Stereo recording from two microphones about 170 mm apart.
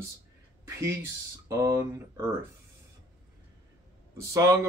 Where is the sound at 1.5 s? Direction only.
15° right (ahead or behind).